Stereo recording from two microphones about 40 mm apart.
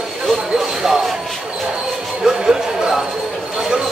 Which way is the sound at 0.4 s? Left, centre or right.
Centre.